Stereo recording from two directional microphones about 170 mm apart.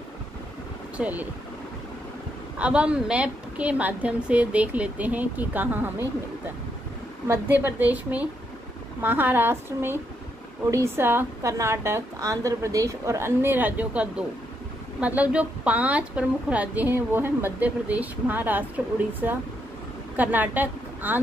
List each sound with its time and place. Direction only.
0.9 s speech: 10° right (ahead or behind)
2.6 s a woman's voice: 5° right (ahead or behind)
7.2 s a woman's voice: 10° right (ahead or behind)